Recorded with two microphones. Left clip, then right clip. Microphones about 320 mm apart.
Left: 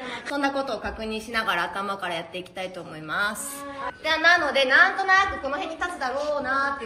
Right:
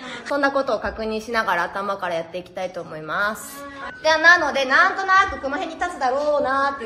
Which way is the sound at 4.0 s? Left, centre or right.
Right.